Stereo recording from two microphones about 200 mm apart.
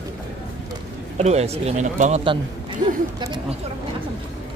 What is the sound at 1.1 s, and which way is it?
Speech, 30° right (ahead or behind).